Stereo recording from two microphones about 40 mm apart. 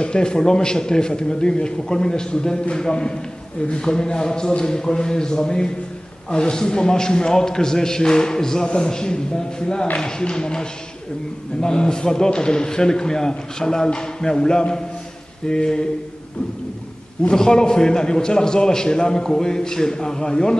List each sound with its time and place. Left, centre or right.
0.0 s a man's voice: left
17.2 s a man's voice: centre